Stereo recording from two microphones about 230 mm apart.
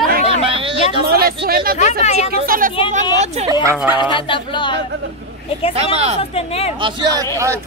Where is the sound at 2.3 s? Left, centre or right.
Right.